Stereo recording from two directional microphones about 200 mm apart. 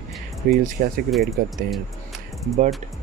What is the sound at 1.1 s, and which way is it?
Speech, centre (ahead or behind).